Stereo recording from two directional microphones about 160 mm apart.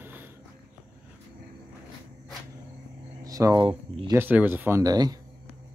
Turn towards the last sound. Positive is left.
turn(degrees=-25)  # may be behind; listen again after turning